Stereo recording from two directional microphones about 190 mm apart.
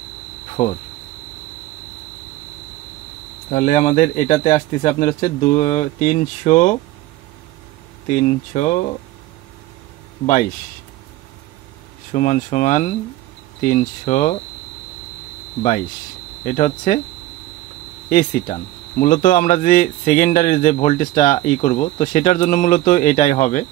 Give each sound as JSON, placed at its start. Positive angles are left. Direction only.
{"t": 0.6, "sound": "a man's voice", "side_deg": 40}
{"t": 3.5, "sound": "a man's voice", "side_deg": 35}
{"t": 8.1, "sound": "a man's voice", "side_deg": 40}
{"t": 12.1, "sound": "a man's voice", "side_deg": 40}
{"t": 16.4, "sound": "a man's voice", "side_deg": 40}
{"t": 18.1, "sound": "speech", "side_deg": 45}